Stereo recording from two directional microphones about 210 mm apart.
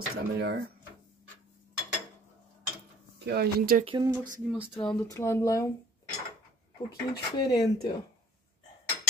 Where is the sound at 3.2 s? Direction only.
45° right (ahead or behind).